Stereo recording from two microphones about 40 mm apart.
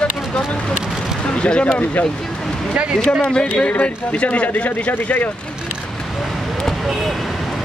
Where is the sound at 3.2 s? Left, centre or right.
Left.